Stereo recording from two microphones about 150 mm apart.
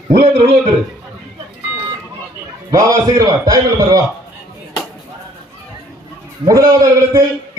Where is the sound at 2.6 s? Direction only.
25° right (ahead or behind).